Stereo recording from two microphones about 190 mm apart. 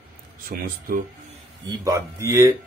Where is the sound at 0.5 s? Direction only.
50° right (ahead or behind).